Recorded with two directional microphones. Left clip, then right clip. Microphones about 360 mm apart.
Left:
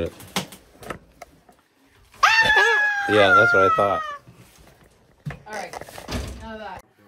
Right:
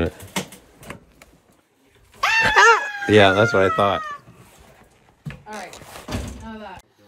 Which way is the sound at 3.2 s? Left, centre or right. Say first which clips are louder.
Left 1 dB; right.